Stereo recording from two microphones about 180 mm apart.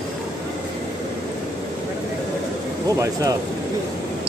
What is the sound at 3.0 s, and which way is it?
Speech, 20° right (ahead or behind).